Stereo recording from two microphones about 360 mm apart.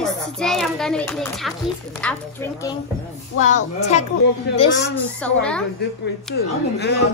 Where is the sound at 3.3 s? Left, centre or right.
Left.